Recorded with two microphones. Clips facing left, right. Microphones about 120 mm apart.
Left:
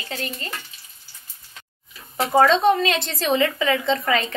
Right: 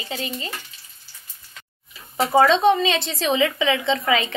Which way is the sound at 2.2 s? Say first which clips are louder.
Right 1 dB; centre (ahead or behind).